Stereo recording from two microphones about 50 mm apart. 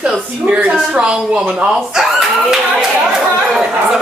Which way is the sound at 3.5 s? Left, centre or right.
Centre.